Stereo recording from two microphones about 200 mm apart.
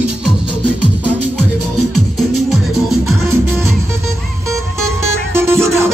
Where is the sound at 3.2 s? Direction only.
10° right (ahead or behind).